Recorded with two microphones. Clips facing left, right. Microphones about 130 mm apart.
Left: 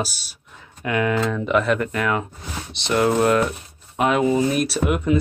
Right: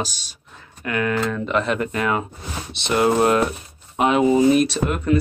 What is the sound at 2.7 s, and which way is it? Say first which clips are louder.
Speech: even; centre (ahead or behind).